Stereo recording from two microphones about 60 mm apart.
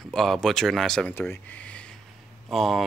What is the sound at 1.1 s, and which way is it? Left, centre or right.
Speech, left.